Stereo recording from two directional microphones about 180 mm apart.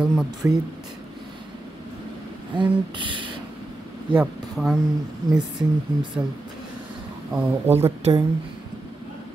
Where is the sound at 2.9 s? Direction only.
25° right (ahead or behind).